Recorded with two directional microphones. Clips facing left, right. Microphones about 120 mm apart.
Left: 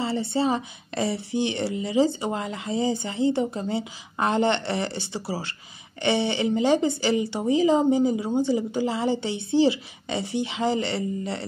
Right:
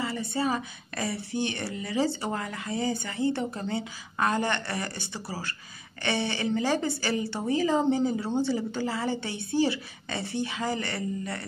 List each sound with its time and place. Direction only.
0.0 s speech: 25° left (ahead or behind)